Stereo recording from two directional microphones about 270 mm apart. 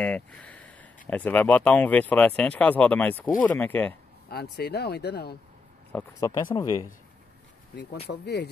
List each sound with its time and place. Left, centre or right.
0.0 s a sound: centre
1.0 s speech: centre
4.3 s speech: left
5.9 s speech: centre
8.1 s speech: left